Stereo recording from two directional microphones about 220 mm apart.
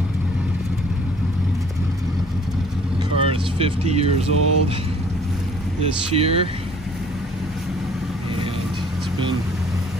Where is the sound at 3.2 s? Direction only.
25° right (ahead or behind).